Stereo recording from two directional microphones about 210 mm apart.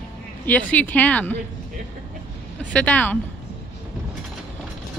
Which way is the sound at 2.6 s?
5° left (ahead or behind).